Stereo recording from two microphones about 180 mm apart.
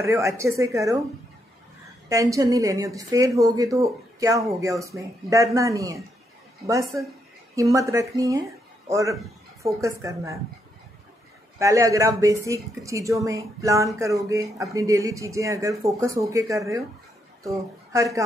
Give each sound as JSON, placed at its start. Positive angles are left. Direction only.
{"t": 0.0, "sound": "speech", "side_deg": -15}
{"t": 2.0, "sound": "speech", "side_deg": -20}
{"t": 7.5, "sound": "a man's voice", "side_deg": -15}
{"t": 11.5, "sound": "a woman's voice", "side_deg": -15}